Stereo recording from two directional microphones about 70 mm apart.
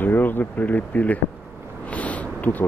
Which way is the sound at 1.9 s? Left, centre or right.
Left.